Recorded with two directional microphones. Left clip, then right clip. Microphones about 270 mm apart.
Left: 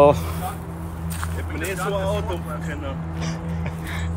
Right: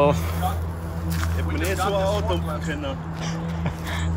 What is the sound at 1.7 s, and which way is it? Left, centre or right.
Speech, right.